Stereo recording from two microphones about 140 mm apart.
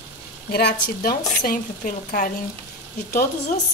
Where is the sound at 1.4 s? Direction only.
80° left.